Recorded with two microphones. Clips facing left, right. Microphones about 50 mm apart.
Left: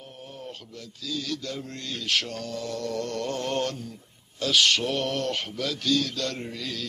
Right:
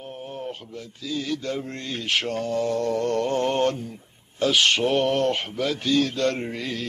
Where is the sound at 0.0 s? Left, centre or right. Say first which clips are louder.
Right 7 dB; right.